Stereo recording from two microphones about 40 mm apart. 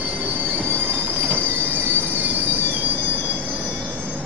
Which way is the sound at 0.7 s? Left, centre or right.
Right.